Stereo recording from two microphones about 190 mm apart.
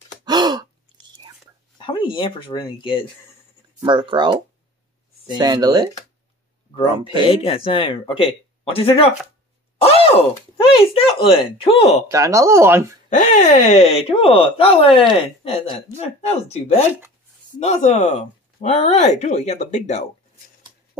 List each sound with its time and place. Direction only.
0.2 s gasp: 20° right (ahead or behind)
1.8 s speech: 25° left (ahead or behind)
3.8 s speech: 25° right (ahead or behind)
5.4 s speech: 20° right (ahead or behind)
7.2 s speech: 30° left (ahead or behind)
12.1 s speech: 15° right (ahead or behind)
13.1 s speech: 40° left (ahead or behind)